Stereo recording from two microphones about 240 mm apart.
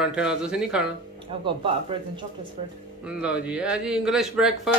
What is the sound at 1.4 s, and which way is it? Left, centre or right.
Speech, right.